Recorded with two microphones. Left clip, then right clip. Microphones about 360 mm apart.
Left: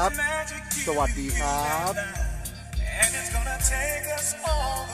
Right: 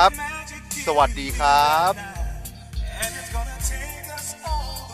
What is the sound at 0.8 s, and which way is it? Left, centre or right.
Speech, right.